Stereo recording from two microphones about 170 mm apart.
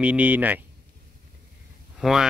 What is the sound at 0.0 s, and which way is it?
Speech, 10° right (ahead or behind).